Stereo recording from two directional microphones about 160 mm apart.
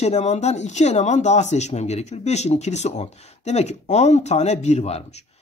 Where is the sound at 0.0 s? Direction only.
45° left (ahead or behind).